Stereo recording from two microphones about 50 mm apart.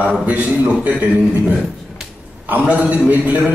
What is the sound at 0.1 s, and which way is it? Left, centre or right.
A man's voice, right.